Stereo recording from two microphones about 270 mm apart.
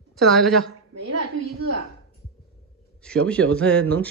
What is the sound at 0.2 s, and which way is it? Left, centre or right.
Speech, centre.